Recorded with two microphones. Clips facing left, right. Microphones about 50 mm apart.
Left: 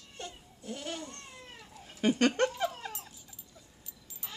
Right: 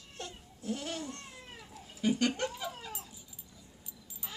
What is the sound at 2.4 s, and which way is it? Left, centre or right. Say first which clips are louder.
Laughter: left 7 dB; left.